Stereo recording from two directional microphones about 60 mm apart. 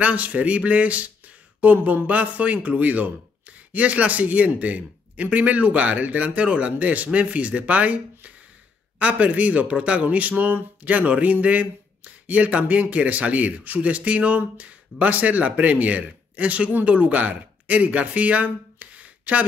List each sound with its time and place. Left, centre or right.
0.0 s speech: right